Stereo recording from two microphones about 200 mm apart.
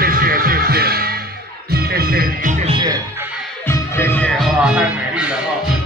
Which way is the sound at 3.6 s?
10° left (ahead or behind).